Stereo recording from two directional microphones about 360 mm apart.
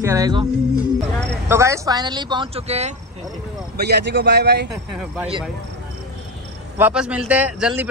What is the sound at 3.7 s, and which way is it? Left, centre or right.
Speech, right.